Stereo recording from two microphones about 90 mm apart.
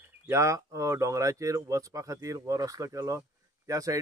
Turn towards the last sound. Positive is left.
turn(degrees=-40)  # may be behind; listen again after turning